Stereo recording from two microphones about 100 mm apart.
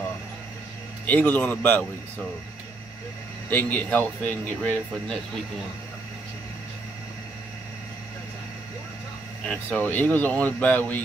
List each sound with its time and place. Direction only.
1.0 s speech: 20° left (ahead or behind)
3.4 s speech: 15° left (ahead or behind)
9.5 s speech: 15° left (ahead or behind)